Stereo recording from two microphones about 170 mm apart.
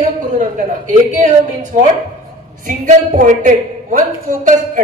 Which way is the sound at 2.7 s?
50° right (ahead or behind).